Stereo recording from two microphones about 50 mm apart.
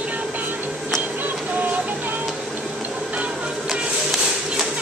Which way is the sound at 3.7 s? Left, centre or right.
Centre.